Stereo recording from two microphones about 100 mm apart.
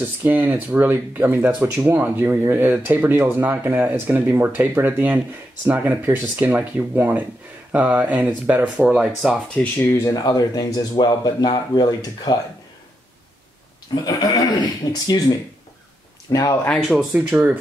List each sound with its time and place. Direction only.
0.2 s speech: 20° right (ahead or behind)
9.0 s speech: centre (ahead or behind)
9.8 s speech: 30° left (ahead or behind)
13.9 s a sound: 50° left (ahead or behind)
14.9 s speech: 40° left (ahead or behind)
16.3 s speech: 35° left (ahead or behind)
16.6 s speech: 5° left (ahead or behind)
17.1 s speech: 20° right (ahead or behind)